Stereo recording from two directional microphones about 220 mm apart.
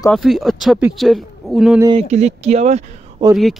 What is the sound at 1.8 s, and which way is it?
Speech, 20° right (ahead or behind).